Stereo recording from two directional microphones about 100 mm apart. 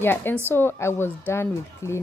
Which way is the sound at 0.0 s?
20° left (ahead or behind).